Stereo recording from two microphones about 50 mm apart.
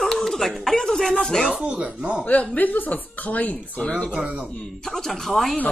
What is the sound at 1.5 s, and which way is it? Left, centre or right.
Speech, right.